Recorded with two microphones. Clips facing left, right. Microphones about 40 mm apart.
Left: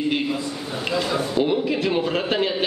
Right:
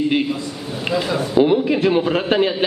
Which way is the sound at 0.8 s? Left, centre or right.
Centre.